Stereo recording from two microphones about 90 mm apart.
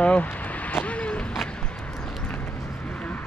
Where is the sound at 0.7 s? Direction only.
15° left (ahead or behind).